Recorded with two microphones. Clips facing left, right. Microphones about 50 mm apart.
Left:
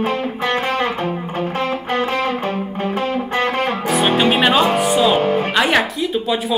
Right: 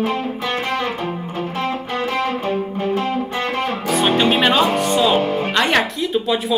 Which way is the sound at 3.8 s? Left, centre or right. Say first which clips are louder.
Even; centre.